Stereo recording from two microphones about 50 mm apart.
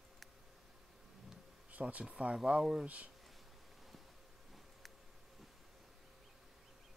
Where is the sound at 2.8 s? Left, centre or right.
Right.